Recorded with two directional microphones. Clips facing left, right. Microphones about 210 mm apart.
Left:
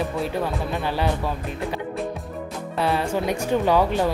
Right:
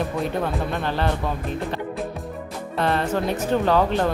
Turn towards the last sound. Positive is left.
turn(degrees=10)  # may be behind; listen again after turning